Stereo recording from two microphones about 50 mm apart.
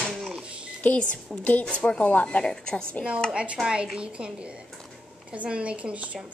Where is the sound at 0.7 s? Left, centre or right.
Left.